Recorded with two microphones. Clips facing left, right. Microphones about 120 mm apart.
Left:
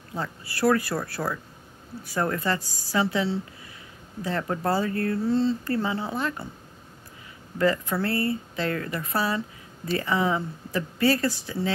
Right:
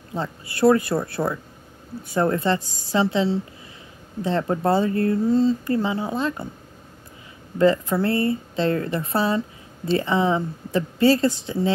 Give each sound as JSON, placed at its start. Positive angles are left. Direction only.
{"t": 0.1, "sound": "speech", "side_deg": -20}
{"t": 7.5, "sound": "speech", "side_deg": -20}